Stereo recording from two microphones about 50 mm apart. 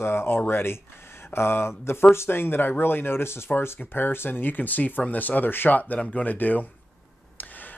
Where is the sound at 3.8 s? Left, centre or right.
Left.